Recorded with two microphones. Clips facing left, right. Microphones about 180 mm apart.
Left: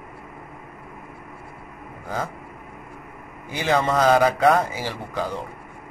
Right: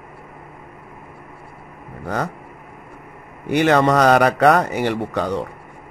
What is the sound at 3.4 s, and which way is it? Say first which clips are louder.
A man's voice: right 7 dB; 65° right (ahead or behind).